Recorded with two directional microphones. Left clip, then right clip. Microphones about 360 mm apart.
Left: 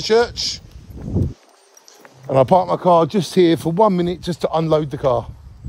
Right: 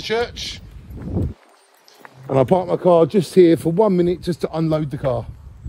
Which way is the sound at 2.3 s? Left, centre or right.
Left.